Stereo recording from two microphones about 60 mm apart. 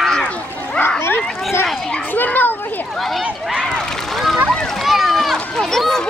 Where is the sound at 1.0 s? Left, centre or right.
Left.